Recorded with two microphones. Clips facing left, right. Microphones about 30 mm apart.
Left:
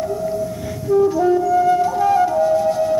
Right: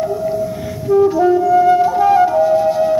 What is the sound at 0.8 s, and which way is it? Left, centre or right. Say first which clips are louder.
Flute: right 3 dB; centre.